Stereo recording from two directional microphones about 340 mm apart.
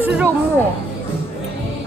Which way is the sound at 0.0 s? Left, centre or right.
Centre.